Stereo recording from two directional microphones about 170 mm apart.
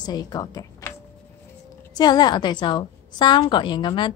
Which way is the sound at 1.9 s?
25° left (ahead or behind).